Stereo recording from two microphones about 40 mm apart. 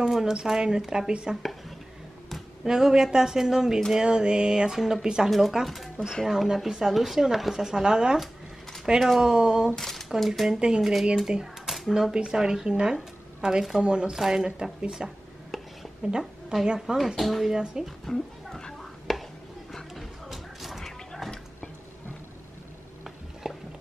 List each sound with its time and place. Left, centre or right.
0.1 s speech: centre
1.3 s speech: centre
2.6 s speech: centre
9.8 s speech: centre; by 14.1 s right
14.1 s speech: centre
16.1 s a woman's voice: centre
16.8 s speech: centre
17.5 s speech: centre
18.0 s dog: centre
18.8 s a sound: centre
19.7 s music: centre
21.2 s a sound: centre
23.4 s music: centre